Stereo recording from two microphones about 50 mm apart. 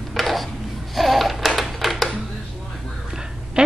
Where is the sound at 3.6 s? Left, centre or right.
Right.